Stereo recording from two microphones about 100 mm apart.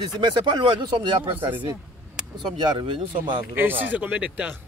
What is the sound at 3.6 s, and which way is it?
Speech, 20° right (ahead or behind).